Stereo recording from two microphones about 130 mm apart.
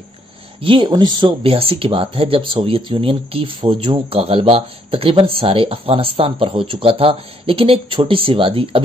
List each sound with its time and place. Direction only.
0.6 s speech: 40° right (ahead or behind)